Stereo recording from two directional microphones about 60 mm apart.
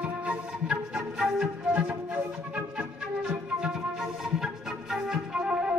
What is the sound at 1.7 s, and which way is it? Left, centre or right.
Music, right.